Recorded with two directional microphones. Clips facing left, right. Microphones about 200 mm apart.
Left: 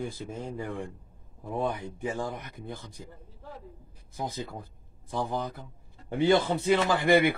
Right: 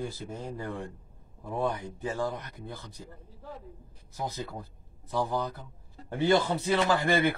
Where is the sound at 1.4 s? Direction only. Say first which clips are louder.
Even; 15° left (ahead or behind).